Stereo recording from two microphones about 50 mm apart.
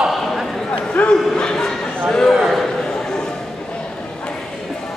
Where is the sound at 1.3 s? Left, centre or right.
Centre.